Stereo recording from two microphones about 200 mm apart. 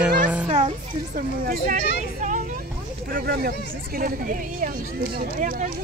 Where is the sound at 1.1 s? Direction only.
45° right (ahead or behind).